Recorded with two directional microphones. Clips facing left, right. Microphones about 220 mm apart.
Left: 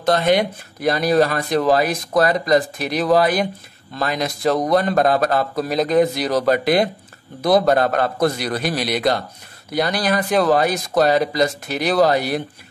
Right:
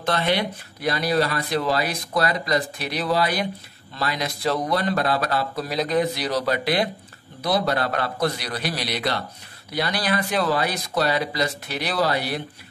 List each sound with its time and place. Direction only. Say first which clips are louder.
0.0 s speech: left 6 dB; 45° left (ahead or behind)